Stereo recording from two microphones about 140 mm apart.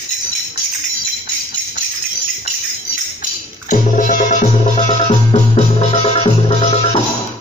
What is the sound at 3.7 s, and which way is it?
Music, 70° left (ahead or behind).